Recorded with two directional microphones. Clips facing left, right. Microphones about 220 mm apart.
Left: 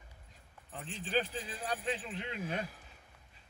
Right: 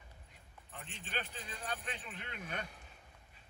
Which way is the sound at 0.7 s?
35° left (ahead or behind).